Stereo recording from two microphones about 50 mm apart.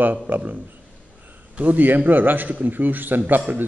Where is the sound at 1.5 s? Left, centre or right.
Right.